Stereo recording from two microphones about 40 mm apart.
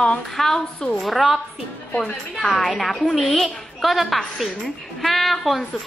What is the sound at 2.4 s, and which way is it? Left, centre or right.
Speech, centre.